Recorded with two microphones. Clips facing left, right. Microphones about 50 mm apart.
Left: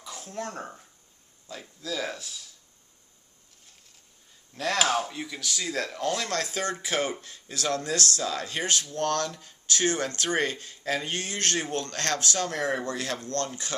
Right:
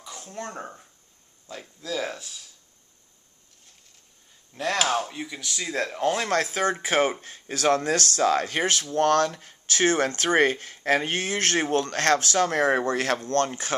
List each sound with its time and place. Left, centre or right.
0.0 s speech: centre
4.7 s speech: centre; by 13.7 s right